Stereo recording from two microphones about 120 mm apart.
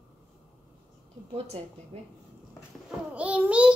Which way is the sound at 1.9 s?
55° right (ahead or behind).